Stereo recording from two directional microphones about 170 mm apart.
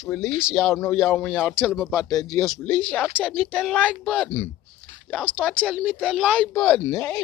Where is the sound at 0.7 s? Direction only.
15° left (ahead or behind).